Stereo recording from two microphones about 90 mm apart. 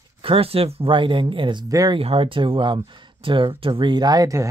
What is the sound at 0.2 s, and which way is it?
Speech, 90° right.